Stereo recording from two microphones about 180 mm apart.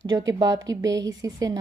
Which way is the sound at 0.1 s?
20° right (ahead or behind).